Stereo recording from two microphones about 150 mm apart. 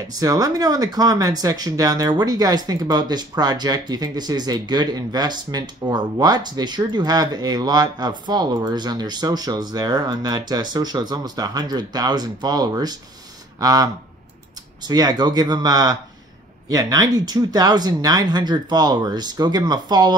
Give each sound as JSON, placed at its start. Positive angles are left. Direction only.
{"t": 0.2, "sound": "speech", "side_deg": -25}
{"t": 14.9, "sound": "speech", "side_deg": -25}